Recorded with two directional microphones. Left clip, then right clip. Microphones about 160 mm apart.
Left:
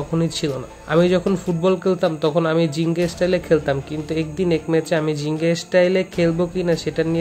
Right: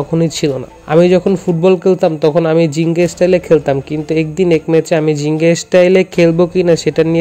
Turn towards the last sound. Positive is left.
turn(degrees=-45)  # may be behind; listen again after turning